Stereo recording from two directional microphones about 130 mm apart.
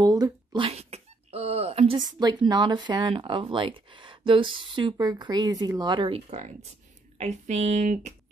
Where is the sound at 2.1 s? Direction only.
30° right (ahead or behind).